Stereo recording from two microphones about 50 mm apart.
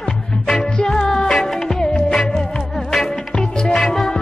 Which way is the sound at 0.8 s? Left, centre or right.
Centre.